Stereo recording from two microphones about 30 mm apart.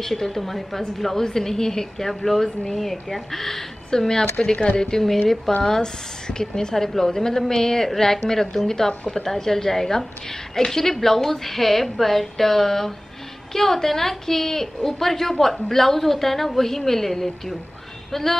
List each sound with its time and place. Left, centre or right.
0.0 s a woman's voice: centre
4.1 s a woman's voice: left